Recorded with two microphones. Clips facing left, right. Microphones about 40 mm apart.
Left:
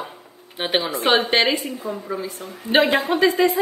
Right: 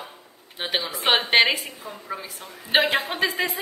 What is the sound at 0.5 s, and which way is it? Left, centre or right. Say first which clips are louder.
Speech: left 5 dB; centre.